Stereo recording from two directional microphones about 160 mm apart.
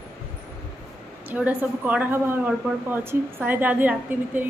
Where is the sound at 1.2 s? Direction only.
10° right (ahead or behind).